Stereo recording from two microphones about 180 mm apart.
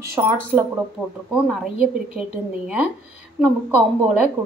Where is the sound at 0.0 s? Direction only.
15° right (ahead or behind).